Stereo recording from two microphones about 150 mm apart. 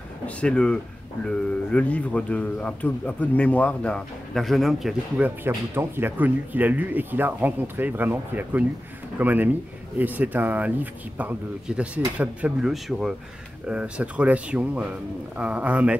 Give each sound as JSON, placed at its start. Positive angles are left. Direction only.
{"t": 0.4, "sound": "speech", "side_deg": 5}